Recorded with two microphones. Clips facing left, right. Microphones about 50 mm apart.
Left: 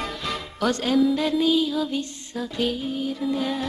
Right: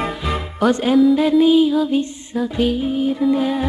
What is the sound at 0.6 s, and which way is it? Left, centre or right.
Speech, centre.